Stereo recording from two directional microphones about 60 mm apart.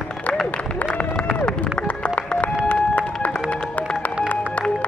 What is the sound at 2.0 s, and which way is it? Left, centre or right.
Music, left.